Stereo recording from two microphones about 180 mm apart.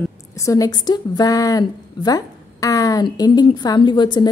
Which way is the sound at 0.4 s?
20° left (ahead or behind).